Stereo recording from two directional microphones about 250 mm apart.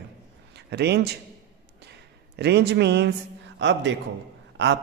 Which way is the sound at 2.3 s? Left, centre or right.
Right.